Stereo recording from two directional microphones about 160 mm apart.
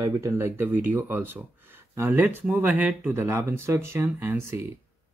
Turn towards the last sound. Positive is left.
turn(degrees=-15)  # may be behind; listen again after turning